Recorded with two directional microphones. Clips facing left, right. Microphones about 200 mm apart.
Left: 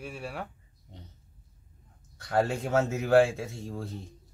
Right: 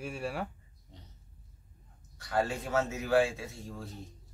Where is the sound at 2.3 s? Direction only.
55° left (ahead or behind).